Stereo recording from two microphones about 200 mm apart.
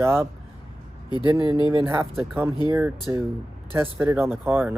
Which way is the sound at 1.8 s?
10° right (ahead or behind).